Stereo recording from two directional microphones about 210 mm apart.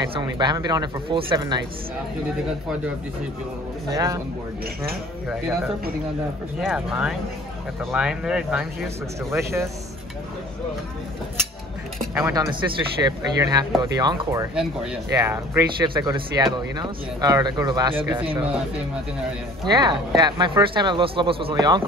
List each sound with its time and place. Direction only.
0.0 s speech: 20° right (ahead or behind)
3.9 s speech: 15° right (ahead or behind)
6.6 s speech: 5° right (ahead or behind)
12.0 s speech: 10° right (ahead or behind)
14.5 s speech: 5° right (ahead or behind)
15.0 s speech: 15° right (ahead or behind)
19.7 s speech: 20° right (ahead or behind)